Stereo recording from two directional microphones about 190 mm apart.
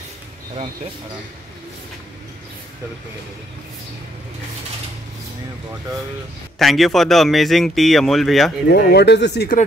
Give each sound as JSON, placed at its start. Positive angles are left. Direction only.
{"t": 6.6, "sound": "speech", "side_deg": 0}
{"t": 8.6, "sound": "speech", "side_deg": 60}